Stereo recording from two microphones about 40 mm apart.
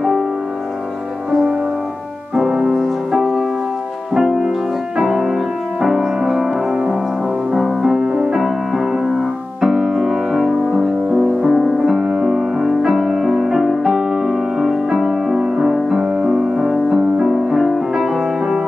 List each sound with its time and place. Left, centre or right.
2.3 s piano: centre
2.7 s music: centre
4.1 s music: centre
6.7 s music: centre
8.4 s music: centre
12.0 s music: centre
16.1 s music: right
16.5 s music: centre